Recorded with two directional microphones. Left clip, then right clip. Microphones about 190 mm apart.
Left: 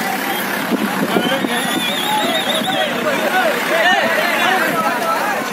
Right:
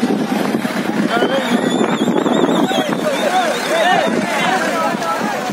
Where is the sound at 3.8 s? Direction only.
40° right (ahead or behind).